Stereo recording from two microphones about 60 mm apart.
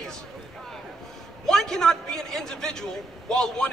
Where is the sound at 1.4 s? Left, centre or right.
Centre.